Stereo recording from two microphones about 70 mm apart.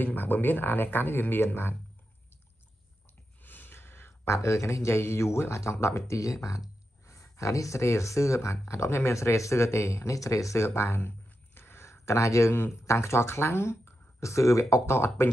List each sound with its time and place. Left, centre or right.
0.0 s speech: left
3.4 s a sound: left
4.4 s speech: left